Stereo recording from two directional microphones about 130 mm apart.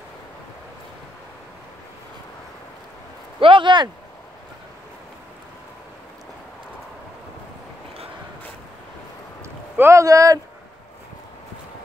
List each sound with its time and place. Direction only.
3.3 s speech: 40° right (ahead or behind)
9.4 s speech: 20° right (ahead or behind)